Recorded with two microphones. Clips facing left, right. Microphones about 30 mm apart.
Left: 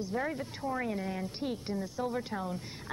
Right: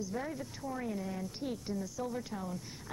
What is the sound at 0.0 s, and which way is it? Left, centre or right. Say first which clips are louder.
Speech: left 4 dB; left.